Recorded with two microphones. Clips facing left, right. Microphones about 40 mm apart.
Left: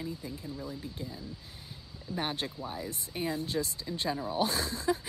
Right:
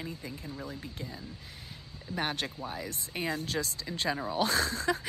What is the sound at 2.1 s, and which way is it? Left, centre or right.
Speech, right.